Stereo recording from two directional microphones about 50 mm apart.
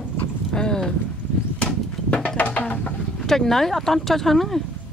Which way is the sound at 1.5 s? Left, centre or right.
Left.